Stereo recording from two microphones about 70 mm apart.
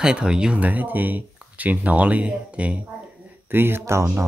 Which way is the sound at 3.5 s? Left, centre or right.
Right.